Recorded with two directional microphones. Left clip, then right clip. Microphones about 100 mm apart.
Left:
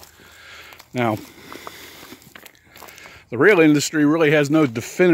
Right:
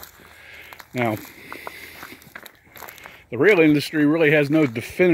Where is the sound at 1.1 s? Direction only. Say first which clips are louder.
Left 2 dB; 50° left (ahead or behind).